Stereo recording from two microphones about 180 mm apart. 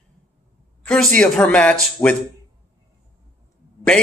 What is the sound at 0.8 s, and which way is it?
Speech, 5° left (ahead or behind).